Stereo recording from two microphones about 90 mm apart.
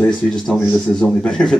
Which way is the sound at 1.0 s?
5° left (ahead or behind).